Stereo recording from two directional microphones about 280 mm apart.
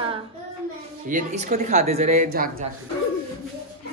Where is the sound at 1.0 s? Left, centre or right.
Right.